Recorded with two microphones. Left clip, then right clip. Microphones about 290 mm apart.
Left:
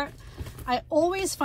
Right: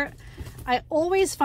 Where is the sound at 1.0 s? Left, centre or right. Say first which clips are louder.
Right 5 dB; centre.